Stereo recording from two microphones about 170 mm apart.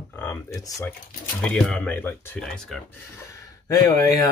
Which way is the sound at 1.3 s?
5° left (ahead or behind).